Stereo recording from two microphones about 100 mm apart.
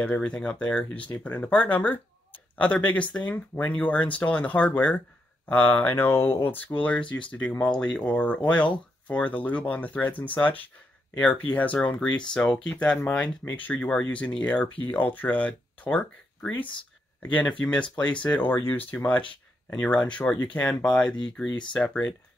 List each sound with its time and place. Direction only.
0.0 s speech: 10° left (ahead or behind)